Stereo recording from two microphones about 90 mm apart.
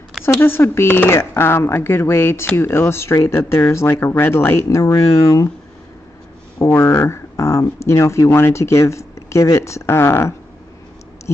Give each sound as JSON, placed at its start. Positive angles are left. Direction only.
{"t": 0.2, "sound": "speech", "side_deg": 25}
{"t": 4.6, "sound": "speech", "side_deg": 35}
{"t": 6.7, "sound": "speech", "side_deg": 30}
{"t": 11.3, "sound": "tick", "side_deg": 30}